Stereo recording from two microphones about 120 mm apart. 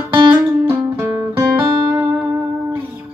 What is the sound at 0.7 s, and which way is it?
Music, 15° right (ahead or behind).